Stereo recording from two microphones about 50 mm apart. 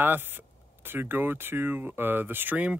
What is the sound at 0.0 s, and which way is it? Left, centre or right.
Speech, right.